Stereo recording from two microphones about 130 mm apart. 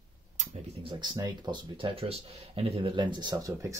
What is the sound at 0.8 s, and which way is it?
Speech, 35° right (ahead or behind).